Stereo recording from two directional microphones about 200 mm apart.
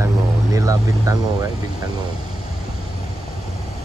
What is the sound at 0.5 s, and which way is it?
Vehicle, 15° right (ahead or behind).